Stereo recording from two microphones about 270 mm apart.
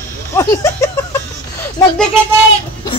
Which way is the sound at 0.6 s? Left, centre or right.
Centre.